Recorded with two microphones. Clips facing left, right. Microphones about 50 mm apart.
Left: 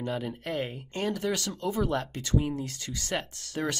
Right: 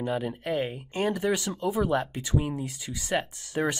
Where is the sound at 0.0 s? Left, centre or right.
Centre.